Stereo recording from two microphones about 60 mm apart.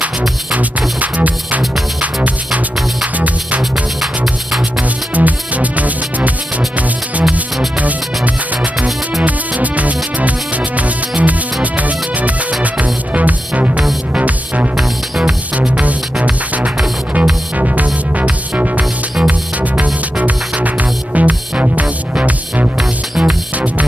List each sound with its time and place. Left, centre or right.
0.5 s music: right
4.0 s music: centre
5.1 s music: right
8.7 s music: centre
9.2 s music: right
14.8 s music: centre
15.5 s music: right
22.8 s music: centre